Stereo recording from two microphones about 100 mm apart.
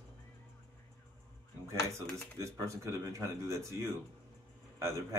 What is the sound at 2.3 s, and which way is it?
Speech, 30° right (ahead or behind).